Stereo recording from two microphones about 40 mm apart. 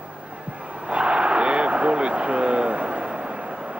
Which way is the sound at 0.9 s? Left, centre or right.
Right.